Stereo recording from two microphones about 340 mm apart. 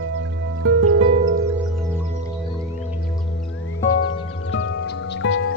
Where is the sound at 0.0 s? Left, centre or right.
Right.